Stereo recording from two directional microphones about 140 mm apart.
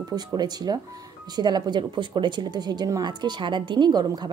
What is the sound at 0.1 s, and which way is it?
A woman's voice, 30° right (ahead or behind).